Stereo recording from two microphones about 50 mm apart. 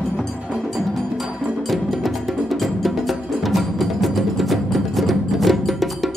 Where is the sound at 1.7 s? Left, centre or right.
Centre.